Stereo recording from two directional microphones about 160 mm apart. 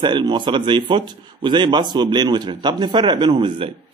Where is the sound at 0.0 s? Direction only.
30° right (ahead or behind).